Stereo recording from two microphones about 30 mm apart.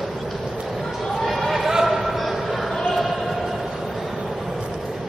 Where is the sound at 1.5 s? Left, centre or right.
Centre.